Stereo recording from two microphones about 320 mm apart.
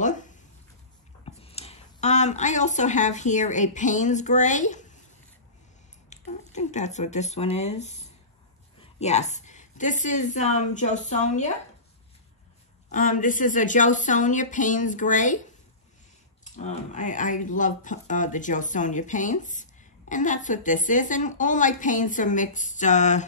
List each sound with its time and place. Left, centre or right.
0.0 s a sound: left
1.2 s speech: centre
6.0 s speech: left
12.9 s speech: left
16.5 s speech: left